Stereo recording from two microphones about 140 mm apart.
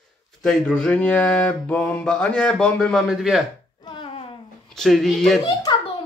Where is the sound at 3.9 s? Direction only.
40° left (ahead or behind).